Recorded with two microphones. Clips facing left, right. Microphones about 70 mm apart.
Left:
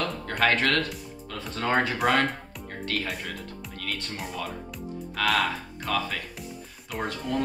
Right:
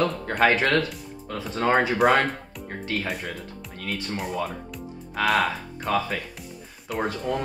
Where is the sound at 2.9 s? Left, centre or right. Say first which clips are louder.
Right 2 dB; centre.